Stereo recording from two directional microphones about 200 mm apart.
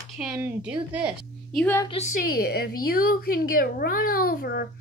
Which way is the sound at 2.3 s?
50° left (ahead or behind).